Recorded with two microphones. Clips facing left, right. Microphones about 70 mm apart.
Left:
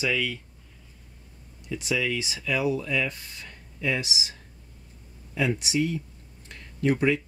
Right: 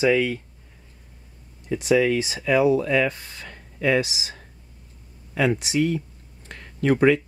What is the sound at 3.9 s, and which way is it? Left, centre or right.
Speech, right.